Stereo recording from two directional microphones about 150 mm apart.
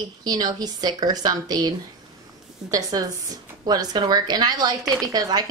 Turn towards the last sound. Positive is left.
turn(degrees=-25)  # may be behind; listen again after turning